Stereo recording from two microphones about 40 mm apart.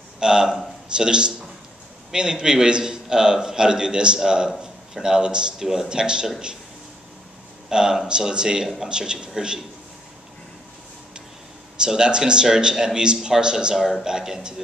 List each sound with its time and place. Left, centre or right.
0.2 s a man's voice: centre
7.7 s a man's voice: centre
11.8 s a man's voice: centre